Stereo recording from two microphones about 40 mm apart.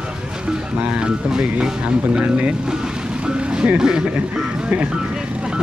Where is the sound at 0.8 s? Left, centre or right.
Right.